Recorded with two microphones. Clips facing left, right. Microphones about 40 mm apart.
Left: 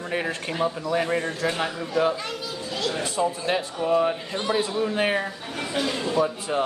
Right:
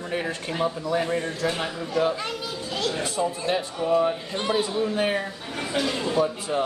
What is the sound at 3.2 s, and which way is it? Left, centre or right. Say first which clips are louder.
Speech: left 1 dB; left.